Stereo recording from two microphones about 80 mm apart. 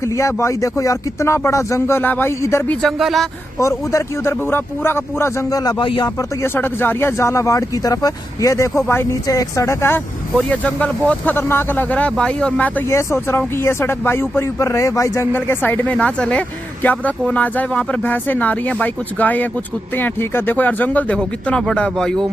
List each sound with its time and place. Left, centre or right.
0.0 s speech: left; by 2.9 s centre
3.0 s a man's voice: centre
3.5 s speech: left
5.5 s speech: left
5.8 s speech: left
6.4 s speech: left
9.3 s speech: left
10.5 s speech: centre
12.9 s speech: left
15.3 s speech: left; by 22.2 s centre